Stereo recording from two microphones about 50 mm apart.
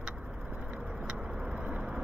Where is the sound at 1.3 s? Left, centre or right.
Centre.